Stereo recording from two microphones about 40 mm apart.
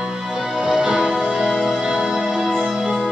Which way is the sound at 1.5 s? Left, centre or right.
Centre.